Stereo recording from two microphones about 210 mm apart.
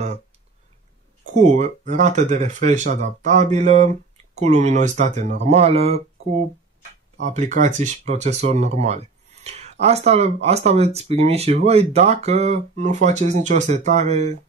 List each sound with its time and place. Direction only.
1.3 s speech: 35° right (ahead or behind)
7.2 s speech: 35° right (ahead or behind)